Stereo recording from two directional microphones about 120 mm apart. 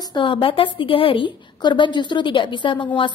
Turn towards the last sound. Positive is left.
turn(degrees=45)  # may be behind; listen again after turning